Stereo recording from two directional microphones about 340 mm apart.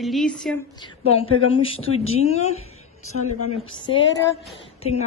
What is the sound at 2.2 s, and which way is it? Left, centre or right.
Speech, centre.